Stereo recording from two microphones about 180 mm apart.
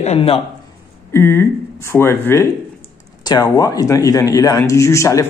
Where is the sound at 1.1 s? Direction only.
15° left (ahead or behind).